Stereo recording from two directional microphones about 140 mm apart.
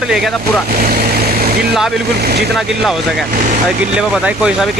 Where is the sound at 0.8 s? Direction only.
90° right.